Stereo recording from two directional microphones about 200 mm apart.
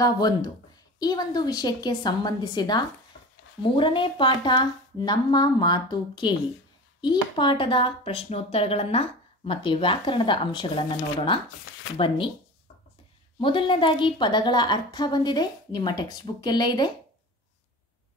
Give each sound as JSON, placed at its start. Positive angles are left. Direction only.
{"t": 0.0, "sound": "speech", "side_deg": 20}
{"t": 13.4, "sound": "speech", "side_deg": 25}